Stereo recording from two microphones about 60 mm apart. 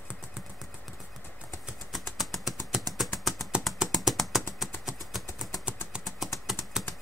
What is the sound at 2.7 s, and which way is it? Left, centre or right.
Vehicle, centre.